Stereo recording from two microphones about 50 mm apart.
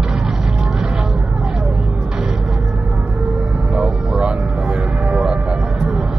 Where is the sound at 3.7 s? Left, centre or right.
Right.